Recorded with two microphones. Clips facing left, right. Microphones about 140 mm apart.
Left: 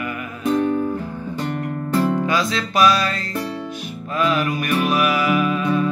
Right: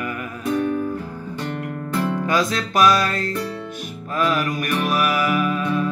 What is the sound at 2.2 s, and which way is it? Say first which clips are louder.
Music: even; 50° right (ahead or behind).